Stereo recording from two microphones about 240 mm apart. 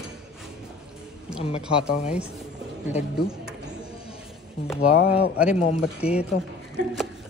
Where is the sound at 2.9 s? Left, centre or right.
Centre.